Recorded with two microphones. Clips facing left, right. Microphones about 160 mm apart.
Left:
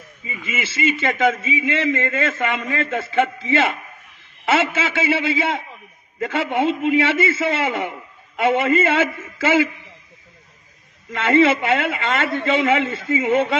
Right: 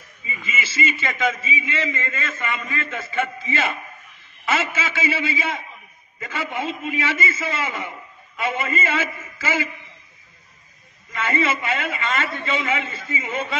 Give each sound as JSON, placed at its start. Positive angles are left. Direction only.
{"t": 0.5, "sound": "a man's voice", "side_deg": 60}
{"t": 11.1, "sound": "a man's voice", "side_deg": 70}